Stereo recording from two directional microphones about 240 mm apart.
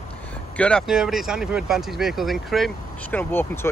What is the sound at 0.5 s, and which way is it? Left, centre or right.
Speech, centre.